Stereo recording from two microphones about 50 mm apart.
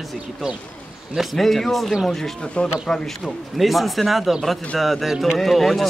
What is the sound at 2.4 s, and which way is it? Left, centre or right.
Speech, centre.